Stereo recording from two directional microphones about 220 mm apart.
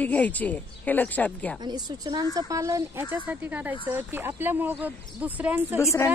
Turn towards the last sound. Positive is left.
turn(degrees=10)  # may be behind; listen again after turning